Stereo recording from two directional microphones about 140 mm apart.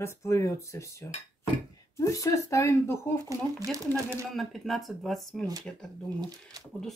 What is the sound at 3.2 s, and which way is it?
Speech, 25° right (ahead or behind).